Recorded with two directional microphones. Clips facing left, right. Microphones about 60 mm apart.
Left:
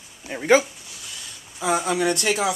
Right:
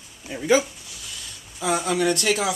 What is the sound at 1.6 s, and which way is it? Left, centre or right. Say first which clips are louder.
Speech: even; centre.